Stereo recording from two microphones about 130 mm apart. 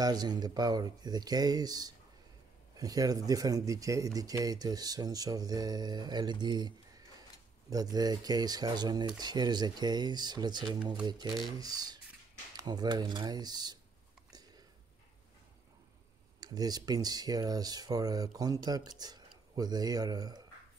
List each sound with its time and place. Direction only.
0.0 s speech: 30° right (ahead or behind)
7.7 s speech: 30° right (ahead or behind)
16.3 s speech: 30° right (ahead or behind)